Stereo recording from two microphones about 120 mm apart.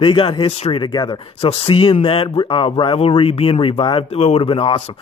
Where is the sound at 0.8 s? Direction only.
35° left (ahead or behind).